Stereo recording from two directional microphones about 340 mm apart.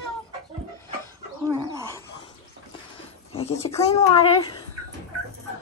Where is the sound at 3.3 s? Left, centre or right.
Centre.